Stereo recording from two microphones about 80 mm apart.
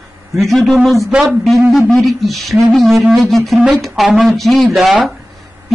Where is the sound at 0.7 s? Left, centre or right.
Centre.